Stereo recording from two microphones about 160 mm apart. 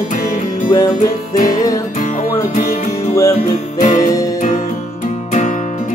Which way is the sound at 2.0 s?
50° left (ahead or behind).